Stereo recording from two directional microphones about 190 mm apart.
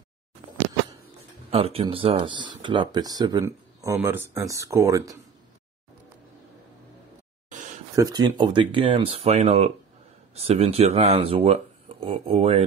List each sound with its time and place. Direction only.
1.5 s speech: 30° right (ahead or behind)
7.9 s speech: 20° right (ahead or behind)